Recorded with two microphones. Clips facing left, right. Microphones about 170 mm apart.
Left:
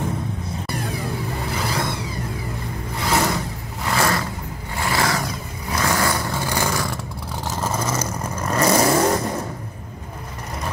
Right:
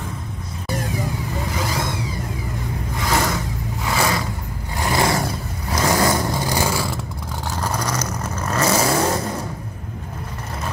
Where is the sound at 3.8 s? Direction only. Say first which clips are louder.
Even; centre (ahead or behind).